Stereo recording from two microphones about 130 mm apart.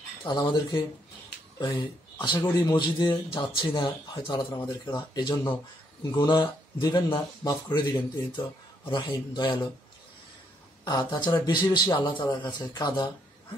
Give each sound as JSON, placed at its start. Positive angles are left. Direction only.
{"t": 0.2, "sound": "speech", "side_deg": 35}
{"t": 10.9, "sound": "speech", "side_deg": 35}